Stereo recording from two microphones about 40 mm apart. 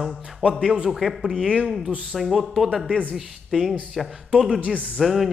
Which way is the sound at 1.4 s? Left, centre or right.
Right.